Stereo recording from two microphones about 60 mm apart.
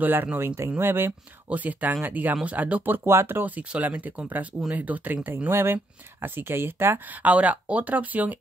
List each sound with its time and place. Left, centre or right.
0.0 s speech: right
1.5 s speech: right
3.4 s speech: right
5.5 s speech: right
7.2 s speech: right